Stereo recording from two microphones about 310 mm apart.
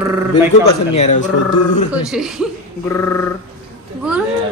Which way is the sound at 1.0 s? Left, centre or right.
Left.